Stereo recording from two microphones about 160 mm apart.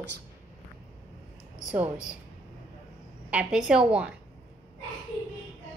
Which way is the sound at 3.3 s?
5° right (ahead or behind).